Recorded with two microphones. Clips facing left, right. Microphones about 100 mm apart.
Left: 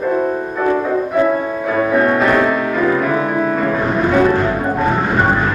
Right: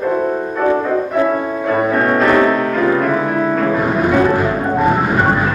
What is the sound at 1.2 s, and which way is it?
Music, centre (ahead or behind).